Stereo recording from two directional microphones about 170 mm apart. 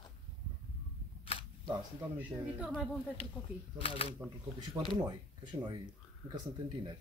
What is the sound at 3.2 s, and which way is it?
Speech, 35° left (ahead or behind).